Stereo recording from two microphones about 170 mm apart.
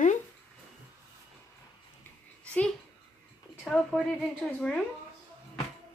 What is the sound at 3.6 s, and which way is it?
A woman's voice, centre (ahead or behind).